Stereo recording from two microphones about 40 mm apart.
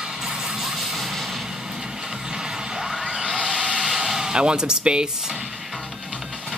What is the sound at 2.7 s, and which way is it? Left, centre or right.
Music, centre.